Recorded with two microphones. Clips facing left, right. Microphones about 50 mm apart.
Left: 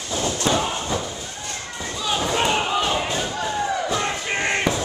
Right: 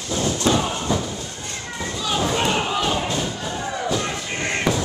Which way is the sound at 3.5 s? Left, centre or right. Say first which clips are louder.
Left 3 dB; centre.